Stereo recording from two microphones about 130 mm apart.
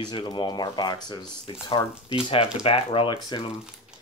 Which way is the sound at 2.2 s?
45° left (ahead or behind).